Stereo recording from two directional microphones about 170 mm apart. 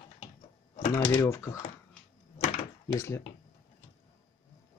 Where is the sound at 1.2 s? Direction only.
15° left (ahead or behind).